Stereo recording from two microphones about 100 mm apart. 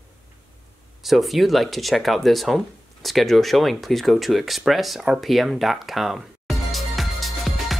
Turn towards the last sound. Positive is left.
turn(degrees=0)  # may be behind; listen again after turning